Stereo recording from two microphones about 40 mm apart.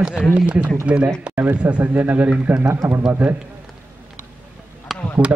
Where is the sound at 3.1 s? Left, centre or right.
Right.